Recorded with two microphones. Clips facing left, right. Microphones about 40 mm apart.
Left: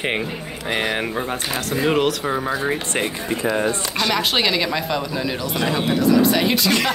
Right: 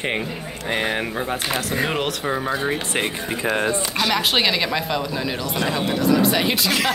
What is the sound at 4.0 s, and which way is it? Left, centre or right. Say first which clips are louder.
Speech: even; centre.